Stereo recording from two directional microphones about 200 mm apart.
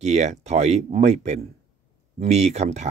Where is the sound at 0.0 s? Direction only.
35° right (ahead or behind).